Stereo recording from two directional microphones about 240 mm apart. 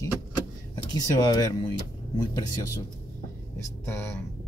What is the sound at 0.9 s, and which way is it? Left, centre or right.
Speech, centre.